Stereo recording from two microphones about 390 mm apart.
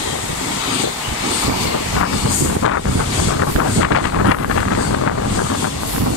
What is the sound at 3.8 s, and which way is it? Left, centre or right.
Wind noise, left.